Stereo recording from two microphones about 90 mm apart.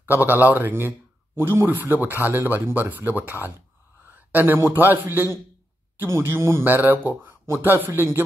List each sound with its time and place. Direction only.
0.0 s a man's voice: 20° right (ahead or behind)